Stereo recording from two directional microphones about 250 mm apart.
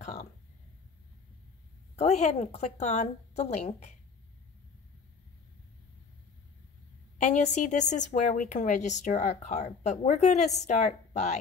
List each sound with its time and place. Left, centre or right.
0.0 s a sound: left
2.0 s a woman's voice: left
7.2 s a woman's voice: left